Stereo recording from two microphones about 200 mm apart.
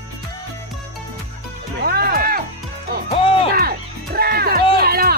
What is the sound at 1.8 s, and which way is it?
Music, 50° right (ahead or behind).